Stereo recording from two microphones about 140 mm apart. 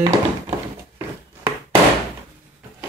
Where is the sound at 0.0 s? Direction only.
20° right (ahead or behind).